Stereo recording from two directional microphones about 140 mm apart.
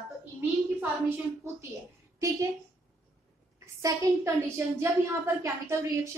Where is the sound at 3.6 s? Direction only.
20° right (ahead or behind).